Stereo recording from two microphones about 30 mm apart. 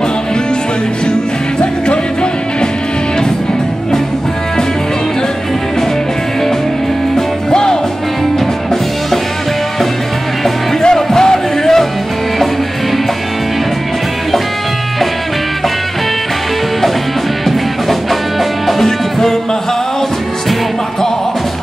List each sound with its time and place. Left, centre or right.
7.5 s music: left
11.0 s music: centre
18.9 s music: centre